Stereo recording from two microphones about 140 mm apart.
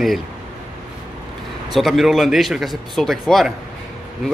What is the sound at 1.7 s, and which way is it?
Speech, centre (ahead or behind).